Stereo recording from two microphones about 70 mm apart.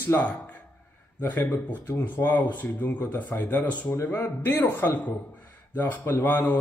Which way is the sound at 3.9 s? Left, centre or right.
Left.